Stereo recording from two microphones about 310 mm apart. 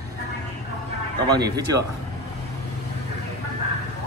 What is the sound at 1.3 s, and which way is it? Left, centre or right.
Speech, centre.